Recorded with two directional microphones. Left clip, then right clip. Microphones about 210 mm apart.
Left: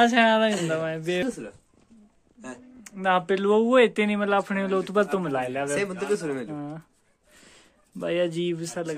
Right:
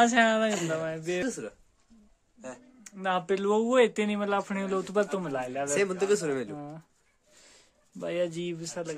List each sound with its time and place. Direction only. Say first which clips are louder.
0.0 s speech: left 4 dB; 10° right (ahead or behind)
2.8 s speech: left 6 dB; centre (ahead or behind)
5.8 s speech: right 1 dB; 50° right (ahead or behind)
6.5 s speech: left 5 dB; centre (ahead or behind)
7.3 s a sound: left 4 dB; centre (ahead or behind)